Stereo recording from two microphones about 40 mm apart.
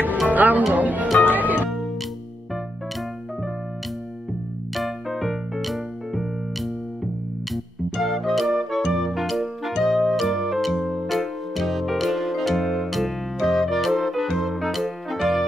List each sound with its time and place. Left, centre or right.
0.3 s music: right
4.7 s music: centre